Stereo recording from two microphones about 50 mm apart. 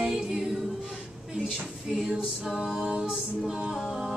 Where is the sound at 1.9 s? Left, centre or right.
Centre.